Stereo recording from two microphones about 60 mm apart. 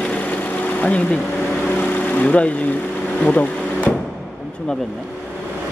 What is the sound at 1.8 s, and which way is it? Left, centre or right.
Vehicle, left.